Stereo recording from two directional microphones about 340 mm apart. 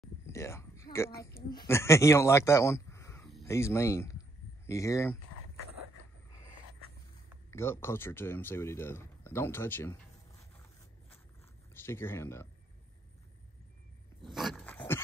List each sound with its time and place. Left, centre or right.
0.3 s a sound: centre
1.2 s a man's voice: centre
7.5 s speech: centre
11.7 s speech: centre
14.2 s dog: centre